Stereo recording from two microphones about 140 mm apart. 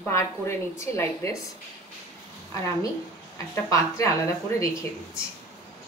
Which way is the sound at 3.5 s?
20° left (ahead or behind).